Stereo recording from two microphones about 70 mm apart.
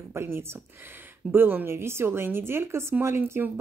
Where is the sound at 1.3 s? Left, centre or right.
Right.